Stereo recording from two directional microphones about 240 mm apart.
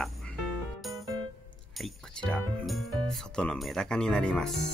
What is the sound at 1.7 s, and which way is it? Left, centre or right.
Speech, centre.